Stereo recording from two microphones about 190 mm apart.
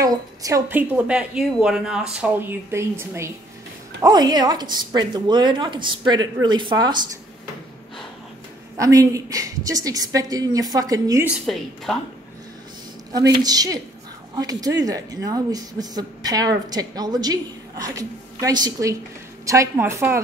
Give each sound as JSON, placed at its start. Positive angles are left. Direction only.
{"t": 0.0, "sound": "a woman's voice", "side_deg": -15}
{"t": 8.7, "sound": "a woman's voice", "side_deg": -15}
{"t": 11.4, "sound": "speech", "side_deg": 0}
{"t": 13.1, "sound": "a woman's voice", "side_deg": -20}